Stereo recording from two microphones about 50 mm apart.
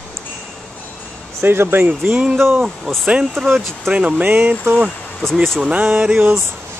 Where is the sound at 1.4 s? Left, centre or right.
Right.